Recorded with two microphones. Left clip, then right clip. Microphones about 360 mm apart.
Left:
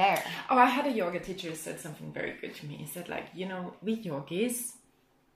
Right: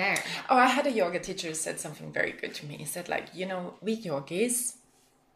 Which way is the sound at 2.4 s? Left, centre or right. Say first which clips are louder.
Right 4 dB; right.